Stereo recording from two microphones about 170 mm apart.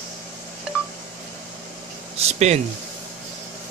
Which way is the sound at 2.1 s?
40° right (ahead or behind).